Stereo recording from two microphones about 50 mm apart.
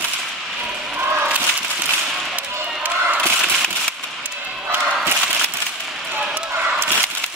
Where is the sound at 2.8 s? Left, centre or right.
Right.